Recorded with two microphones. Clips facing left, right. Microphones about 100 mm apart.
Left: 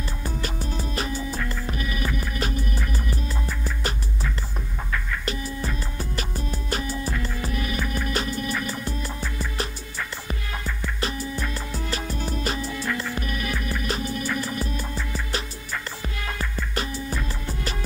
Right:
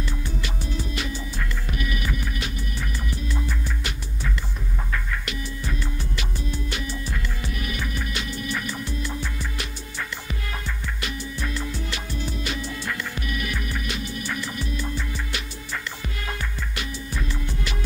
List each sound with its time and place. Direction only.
0.0 s music: 40° left (ahead or behind)
5.2 s music: 35° left (ahead or behind)
10.8 s music: 35° left (ahead or behind)